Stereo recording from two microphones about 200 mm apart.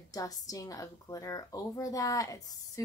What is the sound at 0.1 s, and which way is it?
Speech, 20° left (ahead or behind).